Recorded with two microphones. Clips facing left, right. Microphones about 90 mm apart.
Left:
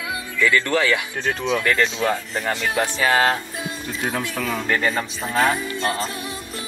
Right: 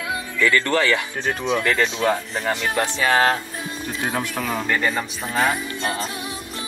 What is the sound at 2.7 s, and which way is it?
Speech, 10° left (ahead or behind).